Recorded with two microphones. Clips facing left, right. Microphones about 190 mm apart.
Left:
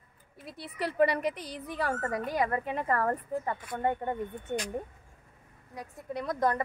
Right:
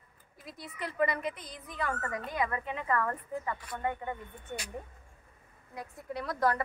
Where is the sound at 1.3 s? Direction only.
75° left (ahead or behind).